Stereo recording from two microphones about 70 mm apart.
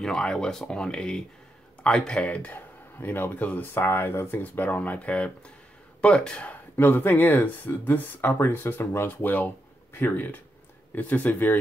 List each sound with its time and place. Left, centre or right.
0.0 s speech: centre
3.0 s speech: left
4.4 s speech: left
6.8 s speech: left